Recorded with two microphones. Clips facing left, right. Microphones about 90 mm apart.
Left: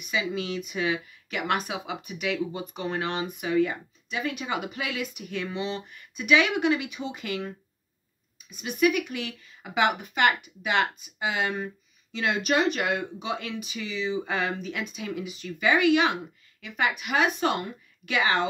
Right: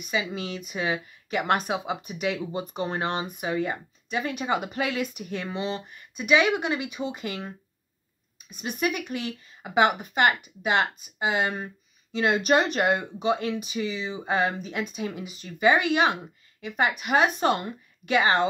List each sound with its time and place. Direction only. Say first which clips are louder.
0.1 s speech: left 1 dB; 35° right (ahead or behind)
8.6 s speech: left 4 dB; 35° right (ahead or behind)